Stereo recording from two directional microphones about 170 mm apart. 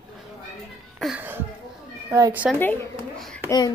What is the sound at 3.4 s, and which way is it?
Speech, 25° left (ahead or behind).